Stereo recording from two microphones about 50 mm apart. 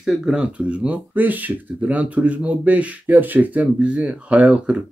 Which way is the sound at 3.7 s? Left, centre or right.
Centre.